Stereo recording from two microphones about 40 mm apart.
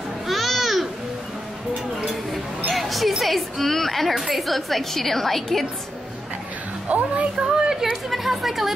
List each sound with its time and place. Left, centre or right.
0.3 s babbling: centre
2.7 s music: centre
4.1 s a woman's voice: centre
6.9 s speech: right
7.4 s speech: centre